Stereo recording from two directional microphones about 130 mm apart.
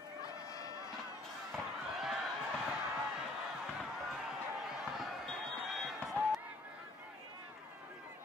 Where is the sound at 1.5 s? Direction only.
Centre (ahead or behind).